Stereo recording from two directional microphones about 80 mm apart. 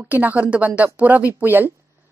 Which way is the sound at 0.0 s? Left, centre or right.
Right.